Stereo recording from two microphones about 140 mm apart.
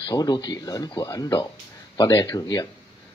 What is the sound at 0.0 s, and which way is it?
Speech, 30° left (ahead or behind).